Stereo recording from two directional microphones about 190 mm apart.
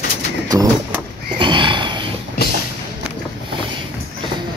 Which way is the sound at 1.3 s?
25° right (ahead or behind).